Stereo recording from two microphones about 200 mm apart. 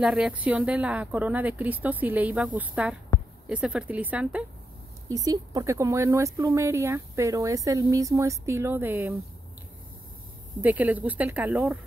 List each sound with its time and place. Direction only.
0.0 s speech: 5° right (ahead or behind)
5.0 s speech: 15° right (ahead or behind)
10.6 s speech: 10° right (ahead or behind)